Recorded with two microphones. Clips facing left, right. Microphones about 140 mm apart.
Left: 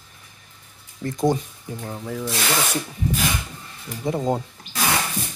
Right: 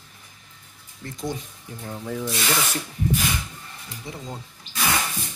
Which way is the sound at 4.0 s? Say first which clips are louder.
Left 14 dB; 50° left (ahead or behind).